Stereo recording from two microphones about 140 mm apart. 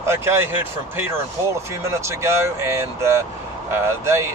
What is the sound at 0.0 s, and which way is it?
Speech, 15° right (ahead or behind).